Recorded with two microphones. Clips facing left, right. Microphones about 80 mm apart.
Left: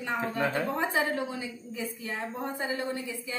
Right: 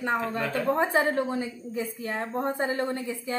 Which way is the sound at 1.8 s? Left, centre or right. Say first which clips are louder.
Right 3 dB; right.